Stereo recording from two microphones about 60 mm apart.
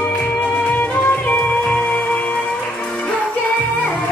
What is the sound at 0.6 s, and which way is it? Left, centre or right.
Music, left.